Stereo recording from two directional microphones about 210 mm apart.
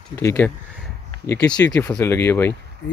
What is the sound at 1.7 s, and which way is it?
Speech, 10° left (ahead or behind).